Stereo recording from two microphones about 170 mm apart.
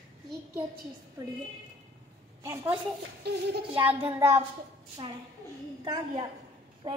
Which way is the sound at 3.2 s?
70° right (ahead or behind).